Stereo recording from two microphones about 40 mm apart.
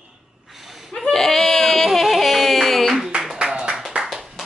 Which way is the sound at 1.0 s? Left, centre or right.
Centre.